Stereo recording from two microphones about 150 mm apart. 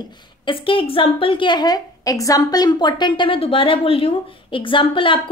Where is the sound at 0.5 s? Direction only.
35° left (ahead or behind).